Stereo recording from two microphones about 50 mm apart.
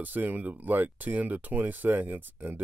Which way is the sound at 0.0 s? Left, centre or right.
Right.